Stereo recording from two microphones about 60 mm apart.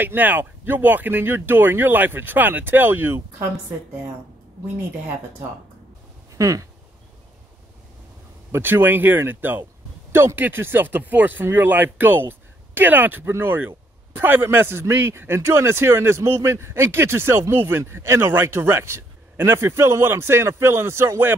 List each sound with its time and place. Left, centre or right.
0.0 s speech: right
6.3 s speech: right
8.5 s speech: right